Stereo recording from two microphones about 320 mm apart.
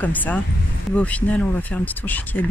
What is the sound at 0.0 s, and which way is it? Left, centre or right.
Speech, centre.